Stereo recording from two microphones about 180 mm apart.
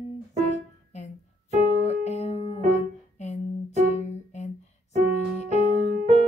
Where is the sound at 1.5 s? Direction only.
40° left (ahead or behind).